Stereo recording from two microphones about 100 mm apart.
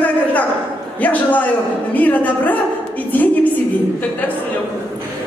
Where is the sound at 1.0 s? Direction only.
15° left (ahead or behind).